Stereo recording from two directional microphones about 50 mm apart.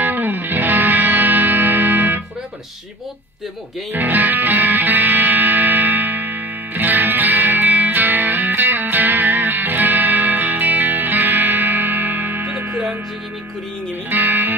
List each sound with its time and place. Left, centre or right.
0.0 s music: right
3.9 s music: right
14.1 s music: right